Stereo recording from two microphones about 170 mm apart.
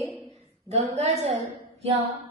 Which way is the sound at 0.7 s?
40° right (ahead or behind).